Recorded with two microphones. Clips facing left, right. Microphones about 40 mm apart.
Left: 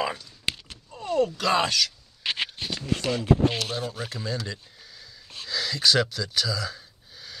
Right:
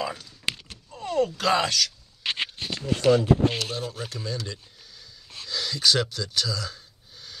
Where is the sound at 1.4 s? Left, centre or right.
Centre.